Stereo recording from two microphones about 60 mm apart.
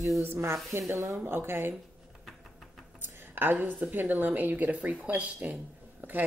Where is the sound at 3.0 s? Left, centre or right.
Right.